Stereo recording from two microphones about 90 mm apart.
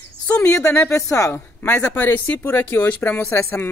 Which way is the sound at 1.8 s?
25° left (ahead or behind).